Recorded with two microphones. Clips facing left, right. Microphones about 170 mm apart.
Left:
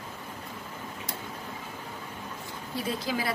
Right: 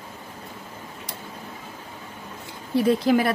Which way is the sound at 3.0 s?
60° right (ahead or behind).